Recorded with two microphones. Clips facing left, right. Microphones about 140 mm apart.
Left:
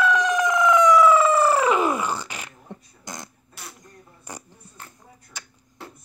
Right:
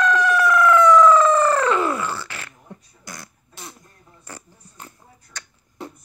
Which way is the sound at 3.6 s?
20° right (ahead or behind).